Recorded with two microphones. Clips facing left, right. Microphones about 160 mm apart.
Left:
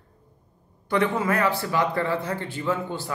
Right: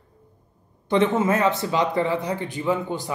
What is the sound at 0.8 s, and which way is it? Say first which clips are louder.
Speech: right 4 dB; 20° right (ahead or behind).